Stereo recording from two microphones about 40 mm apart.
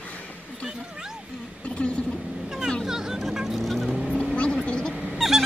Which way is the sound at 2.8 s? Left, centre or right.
Centre.